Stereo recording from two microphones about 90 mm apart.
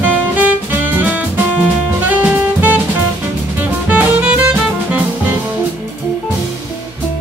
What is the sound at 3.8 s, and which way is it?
Music, 15° right (ahead or behind).